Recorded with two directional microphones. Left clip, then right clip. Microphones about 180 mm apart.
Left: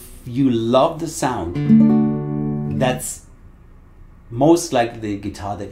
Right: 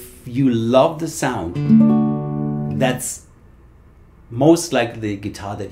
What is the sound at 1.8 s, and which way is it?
Music, 20° left (ahead or behind).